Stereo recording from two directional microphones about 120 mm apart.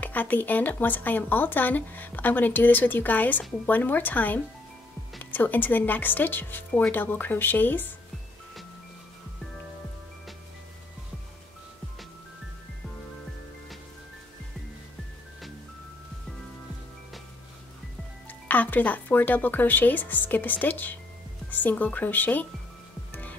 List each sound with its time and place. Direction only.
0.0 s speech: 15° left (ahead or behind)
18.5 s speech: 15° left (ahead or behind)